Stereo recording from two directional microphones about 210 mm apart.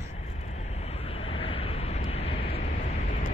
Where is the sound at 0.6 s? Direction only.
30° left (ahead or behind).